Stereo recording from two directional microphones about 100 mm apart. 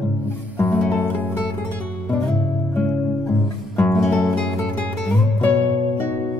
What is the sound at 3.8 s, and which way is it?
Music, 5° left (ahead or behind).